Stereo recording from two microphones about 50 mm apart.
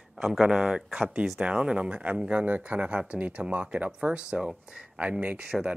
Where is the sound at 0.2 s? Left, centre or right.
Centre.